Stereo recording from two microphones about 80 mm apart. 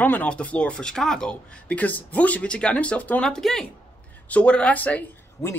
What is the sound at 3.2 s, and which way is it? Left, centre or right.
Speech, centre.